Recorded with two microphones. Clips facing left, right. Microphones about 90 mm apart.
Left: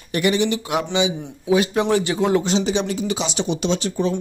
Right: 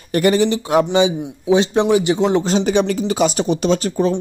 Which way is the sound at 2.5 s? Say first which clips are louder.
Right 4 dB; 50° right (ahead or behind).